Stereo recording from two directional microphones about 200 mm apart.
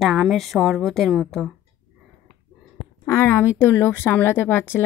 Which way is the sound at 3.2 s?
10° left (ahead or behind).